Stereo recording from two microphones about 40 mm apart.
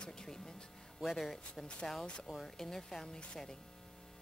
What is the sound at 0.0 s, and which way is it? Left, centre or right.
Music, centre.